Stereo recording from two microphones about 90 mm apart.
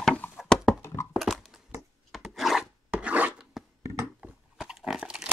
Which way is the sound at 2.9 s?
15° right (ahead or behind).